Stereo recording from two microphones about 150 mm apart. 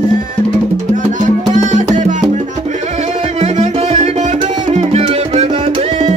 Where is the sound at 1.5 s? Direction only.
55° right (ahead or behind).